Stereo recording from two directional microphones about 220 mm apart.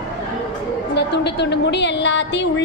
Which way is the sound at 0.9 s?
50° left (ahead or behind).